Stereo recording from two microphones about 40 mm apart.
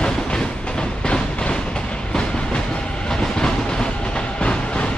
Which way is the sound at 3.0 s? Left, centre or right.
Centre.